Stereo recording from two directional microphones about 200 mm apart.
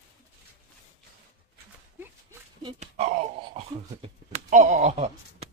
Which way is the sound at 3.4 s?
30° right (ahead or behind).